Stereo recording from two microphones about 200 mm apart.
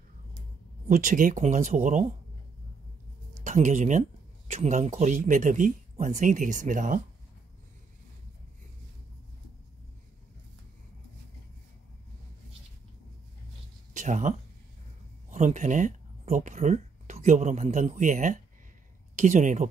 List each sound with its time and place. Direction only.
0.8 s speech: 40° right (ahead or behind)
3.4 s speech: 40° right (ahead or behind)
13.9 s a sound: 40° right (ahead or behind)
15.2 s speech: 40° right (ahead or behind)